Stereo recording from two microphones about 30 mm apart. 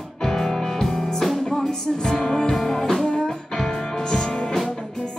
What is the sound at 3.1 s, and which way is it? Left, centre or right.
Music, left.